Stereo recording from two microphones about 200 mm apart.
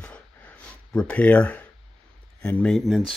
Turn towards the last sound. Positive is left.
turn(degrees=0)  # may be behind; listen again after turning